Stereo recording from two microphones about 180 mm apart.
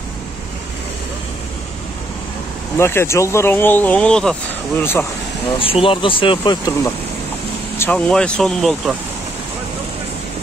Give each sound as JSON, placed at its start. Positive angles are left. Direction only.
{"t": 2.8, "sound": "speech", "side_deg": 15}
{"t": 5.6, "sound": "speech", "side_deg": 30}
{"t": 7.8, "sound": "speech", "side_deg": 5}